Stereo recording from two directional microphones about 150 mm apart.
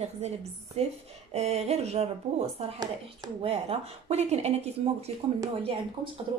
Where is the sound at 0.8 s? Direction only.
45° right (ahead or behind).